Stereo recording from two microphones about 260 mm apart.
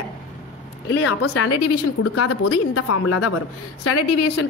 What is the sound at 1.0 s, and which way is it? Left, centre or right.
A woman's voice, left.